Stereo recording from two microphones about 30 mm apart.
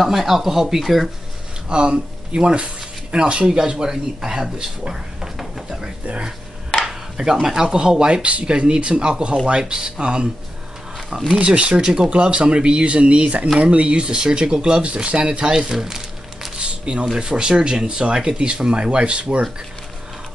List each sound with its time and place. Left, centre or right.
0.0 s speech: centre
1.7 s speech: right
3.4 s speech: right
6.9 s speech: centre
8.1 s speech: right
8.5 s speech: right
11.3 s speech: right
11.8 s speech: right
12.1 s speech: right
14.0 s speech: right
15.2 s speech: right
16.5 s a sound: right
17.1 s speech: right